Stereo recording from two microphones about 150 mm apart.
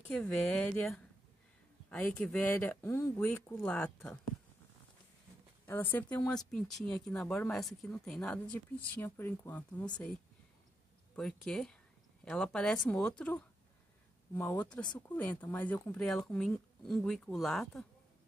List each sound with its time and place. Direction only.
0.1 s speech: 5° left (ahead or behind)
5.7 s speech: 15° left (ahead or behind)
11.1 s speech: 5° left (ahead or behind)